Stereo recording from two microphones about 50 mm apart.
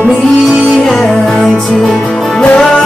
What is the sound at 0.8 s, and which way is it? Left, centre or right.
Music, centre.